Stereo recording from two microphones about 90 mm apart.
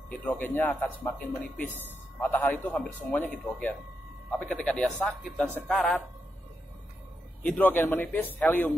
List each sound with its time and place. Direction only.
0.1 s a man's voice: 20° left (ahead or behind)
7.4 s speech: 20° left (ahead or behind)